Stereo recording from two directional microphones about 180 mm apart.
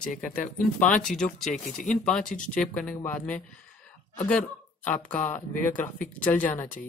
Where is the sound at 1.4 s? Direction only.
45° left (ahead or behind).